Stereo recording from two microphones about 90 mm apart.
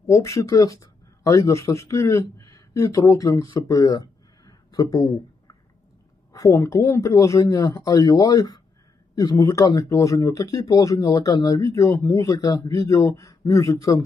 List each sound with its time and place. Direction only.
0.0 s speech: 35° left (ahead or behind)
3.5 s a sound: 40° left (ahead or behind)
6.3 s speech: 40° left (ahead or behind)